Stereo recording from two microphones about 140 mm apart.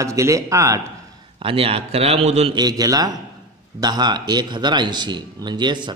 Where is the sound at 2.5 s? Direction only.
25° right (ahead or behind).